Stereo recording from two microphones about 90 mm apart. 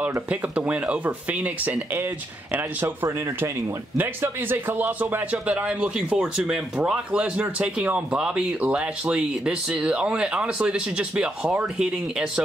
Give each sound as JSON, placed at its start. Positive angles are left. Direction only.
{"t": 0.3, "sound": "speech", "side_deg": -15}